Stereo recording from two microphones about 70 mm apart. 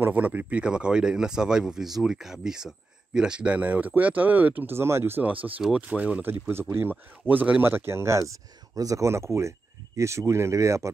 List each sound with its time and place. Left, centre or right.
0.0 s speech: right
4.7 s speech: right
5.2 s speech: right
7.6 s speech: right